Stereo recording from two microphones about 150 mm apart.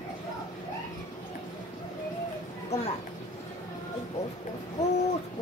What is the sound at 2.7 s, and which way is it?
Speech, 45° left (ahead or behind).